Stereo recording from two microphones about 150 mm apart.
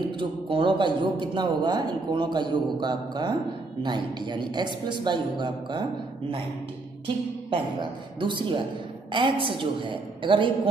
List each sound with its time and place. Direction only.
0.2 s a man's voice: 35° right (ahead or behind)
8.2 s a man's voice: 30° right (ahead or behind)